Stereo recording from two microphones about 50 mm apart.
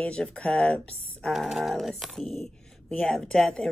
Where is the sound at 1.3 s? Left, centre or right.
Centre.